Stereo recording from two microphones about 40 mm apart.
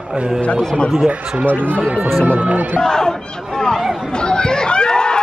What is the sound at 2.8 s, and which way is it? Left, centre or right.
Speech, centre.